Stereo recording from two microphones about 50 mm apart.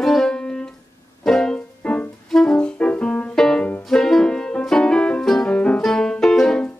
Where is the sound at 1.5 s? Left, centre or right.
Left.